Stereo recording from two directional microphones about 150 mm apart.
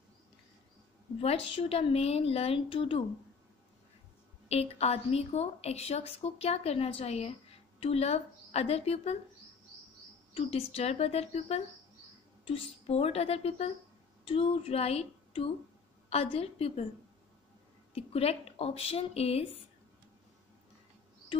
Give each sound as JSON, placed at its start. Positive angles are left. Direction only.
{"t": 1.2, "sound": "a woman's voice", "side_deg": 40}
{"t": 4.5, "sound": "a woman's voice", "side_deg": 45}
{"t": 10.3, "sound": "a woman's voice", "side_deg": 40}
{"t": 17.9, "sound": "a woman's voice", "side_deg": 40}